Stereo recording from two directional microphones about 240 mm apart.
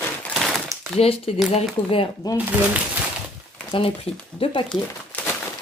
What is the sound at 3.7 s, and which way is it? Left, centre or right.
Speech, left.